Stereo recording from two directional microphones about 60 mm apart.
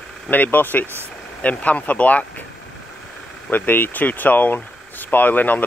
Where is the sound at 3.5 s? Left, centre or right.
Left.